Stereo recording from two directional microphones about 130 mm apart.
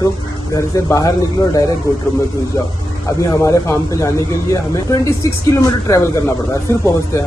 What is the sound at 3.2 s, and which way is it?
Speech, 25° left (ahead or behind).